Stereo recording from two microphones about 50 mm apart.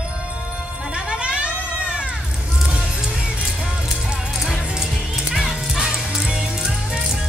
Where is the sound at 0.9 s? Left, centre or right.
Centre.